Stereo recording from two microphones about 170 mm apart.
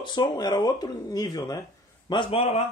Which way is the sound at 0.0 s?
25° left (ahead or behind).